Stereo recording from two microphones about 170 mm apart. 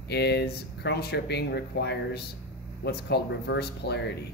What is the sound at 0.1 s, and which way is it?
Speech, 75° left (ahead or behind).